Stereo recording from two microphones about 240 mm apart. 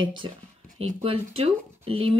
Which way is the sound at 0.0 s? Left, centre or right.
Centre.